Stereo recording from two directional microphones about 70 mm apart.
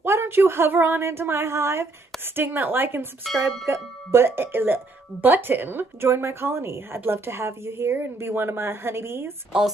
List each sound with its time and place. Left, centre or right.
0.0 s speech: right
3.3 s speech: centre
3.6 s speech: right